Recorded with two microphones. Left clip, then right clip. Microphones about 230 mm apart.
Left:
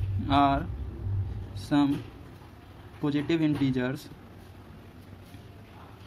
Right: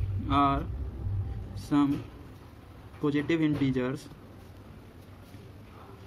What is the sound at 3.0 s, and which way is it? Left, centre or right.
Speech, centre.